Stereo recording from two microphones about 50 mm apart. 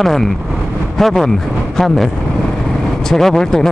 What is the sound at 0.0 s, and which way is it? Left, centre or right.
Speech, centre.